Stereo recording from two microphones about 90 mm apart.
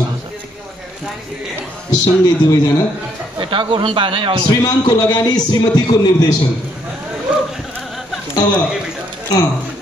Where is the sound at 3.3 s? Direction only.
70° right (ahead or behind).